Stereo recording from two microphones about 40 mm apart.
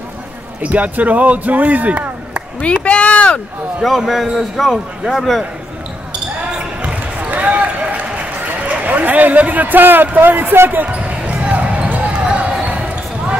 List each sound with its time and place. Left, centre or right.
0.6 s speech: right
2.8 s speech: left
3.8 s a man's voice: centre
6.8 s basketball bounce: right
7.2 s a sound: right
8.6 s a man's voice: right
11.0 s basketball bounce: right